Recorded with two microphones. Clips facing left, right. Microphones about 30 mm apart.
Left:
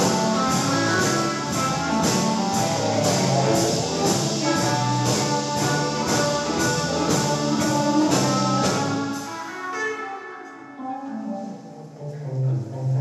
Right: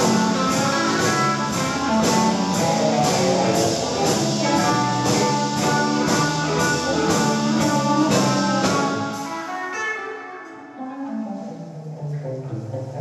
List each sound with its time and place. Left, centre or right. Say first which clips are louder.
0.0 s music: right 2 dB; centre
2.0 s music: right 5 dB; right